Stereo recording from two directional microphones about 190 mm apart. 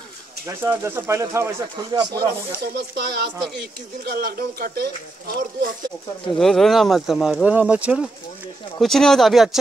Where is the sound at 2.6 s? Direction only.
55° right (ahead or behind).